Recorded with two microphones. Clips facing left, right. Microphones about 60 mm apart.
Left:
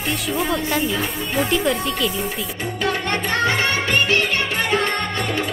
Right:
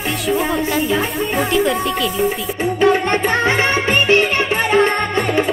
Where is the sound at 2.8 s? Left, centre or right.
Right.